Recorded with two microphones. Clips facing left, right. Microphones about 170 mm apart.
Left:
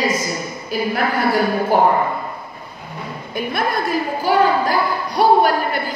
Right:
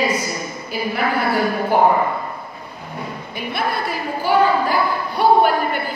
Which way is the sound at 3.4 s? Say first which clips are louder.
Left 3 dB; 45° left (ahead or behind).